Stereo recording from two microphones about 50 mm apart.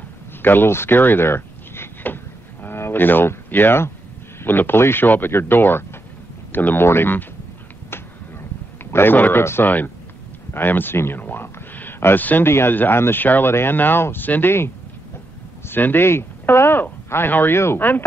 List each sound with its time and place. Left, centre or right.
0.4 s speech: left
5.0 s speech: left
8.9 s speech: left
9.4 s speech: left
10.5 s speech: left
12.4 s speech: left
12.7 s speech: left
13.5 s speech: left
13.7 s speech: left
15.6 s speech: left